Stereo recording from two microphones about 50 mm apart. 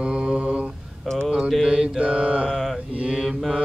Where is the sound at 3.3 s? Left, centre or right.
Centre.